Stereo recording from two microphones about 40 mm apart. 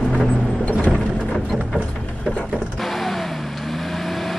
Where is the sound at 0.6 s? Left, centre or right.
Left.